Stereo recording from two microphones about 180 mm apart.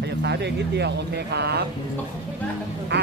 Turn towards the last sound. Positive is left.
turn(degrees=-70)  # may be behind; listen again after turning